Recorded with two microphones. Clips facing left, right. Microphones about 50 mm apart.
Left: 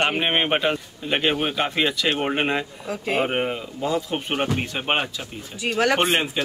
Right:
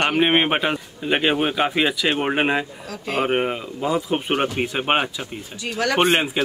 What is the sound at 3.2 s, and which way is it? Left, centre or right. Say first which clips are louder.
A man's voice: right 2 dB; centre.